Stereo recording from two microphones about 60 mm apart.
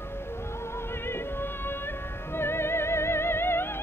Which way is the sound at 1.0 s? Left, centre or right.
Left.